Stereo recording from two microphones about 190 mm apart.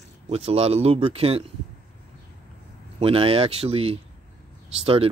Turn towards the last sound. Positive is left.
turn(degrees=-30)  # may be behind; listen again after turning